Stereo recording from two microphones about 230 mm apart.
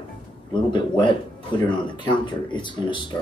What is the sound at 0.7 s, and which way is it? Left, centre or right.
Speech, centre.